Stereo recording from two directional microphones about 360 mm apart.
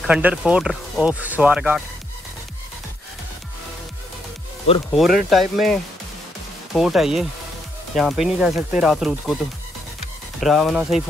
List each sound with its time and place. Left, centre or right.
0.0 s speech: centre
4.9 s speech: centre
10.4 s speech: centre